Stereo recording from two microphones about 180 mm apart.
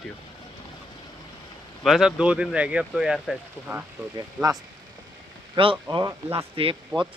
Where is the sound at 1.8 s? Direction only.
Centre (ahead or behind).